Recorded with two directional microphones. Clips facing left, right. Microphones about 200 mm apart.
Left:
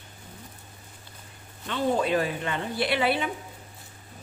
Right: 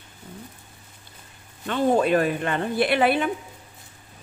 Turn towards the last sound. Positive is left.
turn(degrees=-55)  # may be behind; listen again after turning